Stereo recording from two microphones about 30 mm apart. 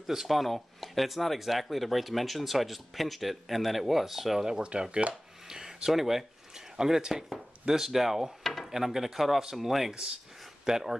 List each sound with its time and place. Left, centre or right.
0.0 s speech: centre
0.3 s speech: centre
4.7 s speech: right
5.5 s a sound: centre
6.8 s speech: centre
9.7 s speech: centre